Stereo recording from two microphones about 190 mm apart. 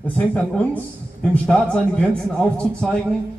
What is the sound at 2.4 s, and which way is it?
Speech, 5° left (ahead or behind).